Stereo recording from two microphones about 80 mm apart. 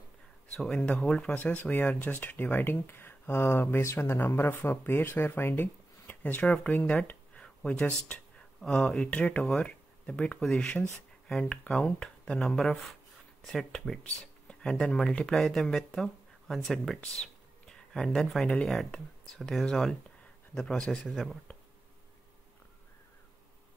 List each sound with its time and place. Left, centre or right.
0.6 s speech: centre
1.3 s speech: left
21.1 s speech: centre